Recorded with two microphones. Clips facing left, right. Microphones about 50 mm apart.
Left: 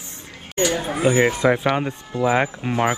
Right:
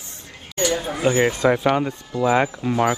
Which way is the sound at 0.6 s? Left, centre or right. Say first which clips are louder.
Left 1 dB; left.